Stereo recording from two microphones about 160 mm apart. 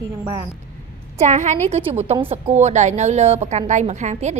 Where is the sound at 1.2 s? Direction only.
50° right (ahead or behind).